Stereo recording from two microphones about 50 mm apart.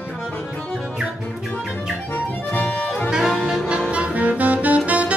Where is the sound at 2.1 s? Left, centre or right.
Left.